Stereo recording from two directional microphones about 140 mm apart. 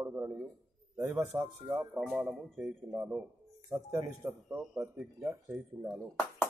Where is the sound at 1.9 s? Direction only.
5° right (ahead or behind).